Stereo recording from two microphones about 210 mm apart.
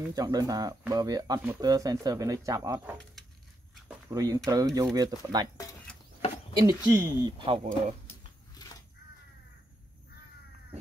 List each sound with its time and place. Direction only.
0.1 s speech: 15° right (ahead or behind)
4.1 s speech: 15° right (ahead or behind)
6.5 s speech: 15° right (ahead or behind)